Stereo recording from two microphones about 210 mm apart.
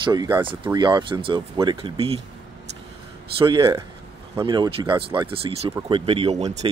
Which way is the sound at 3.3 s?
20° right (ahead or behind).